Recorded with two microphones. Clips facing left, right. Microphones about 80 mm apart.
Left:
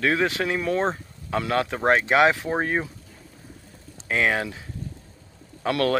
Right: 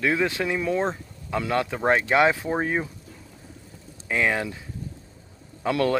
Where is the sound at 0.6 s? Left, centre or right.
Centre.